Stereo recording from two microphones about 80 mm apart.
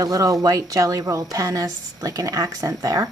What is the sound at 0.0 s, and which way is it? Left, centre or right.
Speech, right.